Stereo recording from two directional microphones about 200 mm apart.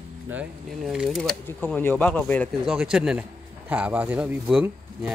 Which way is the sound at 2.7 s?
5° right (ahead or behind).